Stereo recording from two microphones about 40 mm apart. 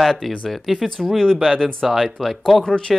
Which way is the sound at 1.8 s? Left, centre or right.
Centre.